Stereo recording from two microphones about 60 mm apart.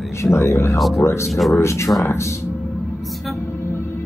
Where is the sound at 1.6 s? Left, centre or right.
Left.